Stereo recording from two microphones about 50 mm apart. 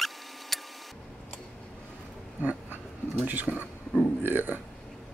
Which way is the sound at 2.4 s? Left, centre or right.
Right.